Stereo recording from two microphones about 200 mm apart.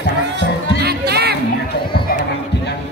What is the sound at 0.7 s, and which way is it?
Music, 55° right (ahead or behind).